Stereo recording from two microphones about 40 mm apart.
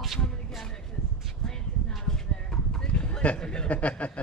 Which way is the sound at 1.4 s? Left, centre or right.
Centre.